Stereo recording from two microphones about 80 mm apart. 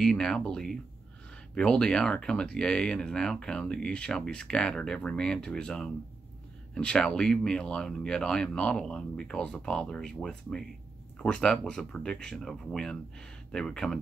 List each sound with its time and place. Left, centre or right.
0.0 s speech: centre
11.1 s speech: centre